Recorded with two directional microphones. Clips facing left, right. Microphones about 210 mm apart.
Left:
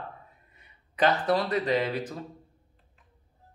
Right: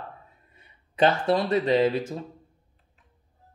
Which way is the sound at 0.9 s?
25° right (ahead or behind).